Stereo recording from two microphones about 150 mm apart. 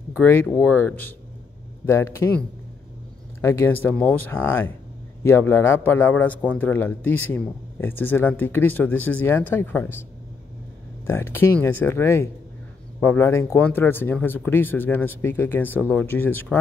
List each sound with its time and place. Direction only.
0.1 s a man's voice: 15° left (ahead or behind)
11.1 s a man's voice: 15° left (ahead or behind)